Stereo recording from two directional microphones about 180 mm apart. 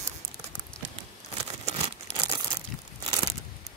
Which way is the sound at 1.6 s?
35° right (ahead or behind).